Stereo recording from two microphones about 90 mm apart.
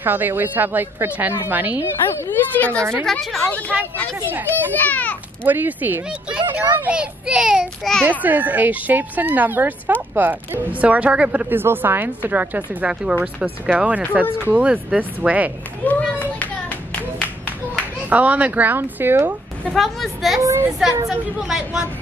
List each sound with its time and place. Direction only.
0.0 s a child's voice: 20° right (ahead or behind)
2.2 s a woman's voice: 20° left (ahead or behind)
3.1 s a woman's voice: 5° left (ahead or behind)
3.4 s speech: 15° left (ahead or behind)
4.7 s a woman's voice: 20° left (ahead or behind)
5.4 s a child's voice: 20° right (ahead or behind)
7.8 s a woman's voice: centre (ahead or behind)
8.2 s a child's voice: 20° right (ahead or behind)
15.8 s clapping: 15° left (ahead or behind)
18.1 s a child's voice: 15° right (ahead or behind)
19.7 s a woman's voice: centre (ahead or behind)
20.4 s a sound: 35° right (ahead or behind)
21.1 s a woman's voice: 5° right (ahead or behind)